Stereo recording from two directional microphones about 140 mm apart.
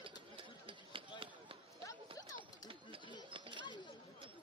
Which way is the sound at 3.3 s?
35° right (ahead or behind).